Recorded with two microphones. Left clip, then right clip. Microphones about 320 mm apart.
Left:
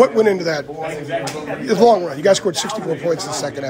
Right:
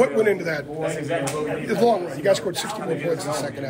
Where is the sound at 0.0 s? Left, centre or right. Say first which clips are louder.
Left 6 dB; centre.